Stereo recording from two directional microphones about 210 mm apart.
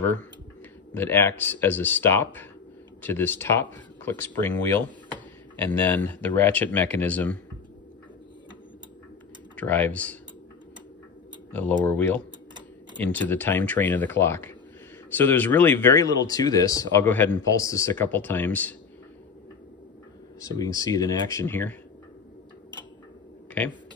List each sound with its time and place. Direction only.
0.9 s speech: 10° left (ahead or behind)
9.6 s speech: 10° left (ahead or behind)
11.5 s speech: 10° left (ahead or behind)
20.3 s speech: 15° left (ahead or behind)
23.6 s speech: 5° left (ahead or behind)